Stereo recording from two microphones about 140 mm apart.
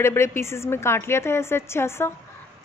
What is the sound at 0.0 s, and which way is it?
A woman's voice, 20° left (ahead or behind).